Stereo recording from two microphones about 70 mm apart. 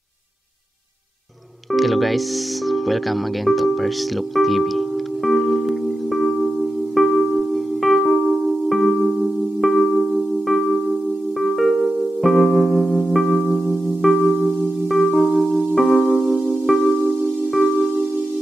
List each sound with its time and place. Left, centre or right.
1.7 s speech: centre
4.4 s music: centre
16.0 s music: centre
16.6 s music: centre